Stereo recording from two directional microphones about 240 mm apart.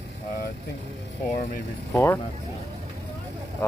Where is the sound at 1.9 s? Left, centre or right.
Centre.